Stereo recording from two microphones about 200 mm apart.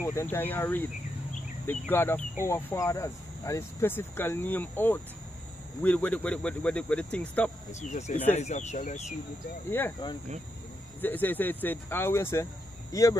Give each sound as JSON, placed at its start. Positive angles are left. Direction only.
{"t": 0.0, "sound": "speech", "side_deg": 15}
{"t": 7.8, "sound": "speech", "side_deg": 40}
{"t": 9.7, "sound": "speech", "side_deg": 10}
{"t": 11.0, "sound": "speech", "side_deg": 10}